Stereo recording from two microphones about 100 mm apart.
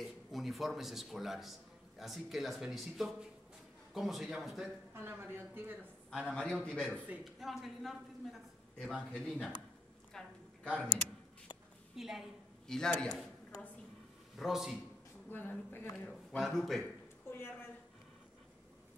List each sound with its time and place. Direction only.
0.0 s a man's voice: centre (ahead or behind)
4.9 s a woman's voice: 20° right (ahead or behind)
6.0 s a man's voice: 10° left (ahead or behind)
7.2 s a man's voice: centre (ahead or behind)
10.1 s a sound: 10° left (ahead or behind)
11.9 s a woman's voice: 5° right (ahead or behind)
14.3 s a man's voice: centre (ahead or behind)
15.2 s speech: 20° left (ahead or behind)
16.1 s a man's voice: centre (ahead or behind)
17.3 s a sound: 25° left (ahead or behind)